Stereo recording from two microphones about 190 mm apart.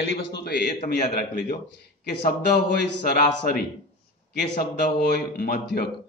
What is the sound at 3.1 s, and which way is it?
A man's voice, 55° left (ahead or behind).